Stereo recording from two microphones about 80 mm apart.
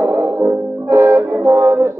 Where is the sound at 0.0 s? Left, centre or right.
Right.